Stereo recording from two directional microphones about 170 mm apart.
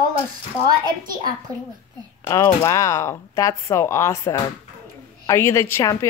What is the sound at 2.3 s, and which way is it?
Speech, 20° left (ahead or behind).